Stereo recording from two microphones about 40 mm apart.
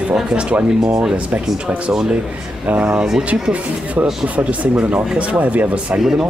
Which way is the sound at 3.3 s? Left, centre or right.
Right.